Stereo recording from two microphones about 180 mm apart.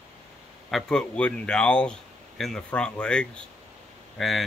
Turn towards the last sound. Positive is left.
turn(degrees=0)  # may be behind; listen again after turning